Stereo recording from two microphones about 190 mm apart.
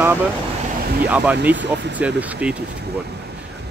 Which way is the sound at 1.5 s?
70° right (ahead or behind).